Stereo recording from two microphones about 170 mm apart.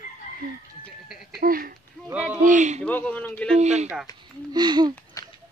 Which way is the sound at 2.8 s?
10° left (ahead or behind).